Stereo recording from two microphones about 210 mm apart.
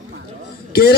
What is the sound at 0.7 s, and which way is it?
Speech, 45° left (ahead or behind).